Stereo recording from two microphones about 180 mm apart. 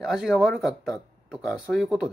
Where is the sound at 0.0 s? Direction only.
Centre (ahead or behind).